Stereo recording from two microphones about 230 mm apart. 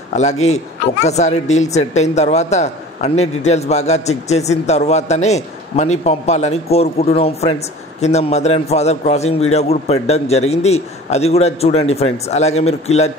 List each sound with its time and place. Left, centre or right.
0.1 s speech: left